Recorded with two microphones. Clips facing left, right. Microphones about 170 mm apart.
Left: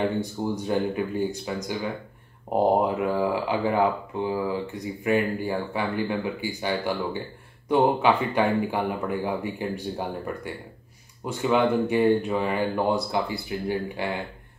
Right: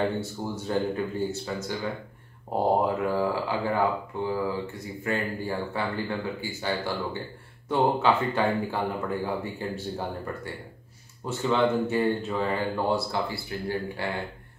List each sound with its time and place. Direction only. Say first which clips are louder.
0.2 s speech: left 5 dB; 15° left (ahead or behind)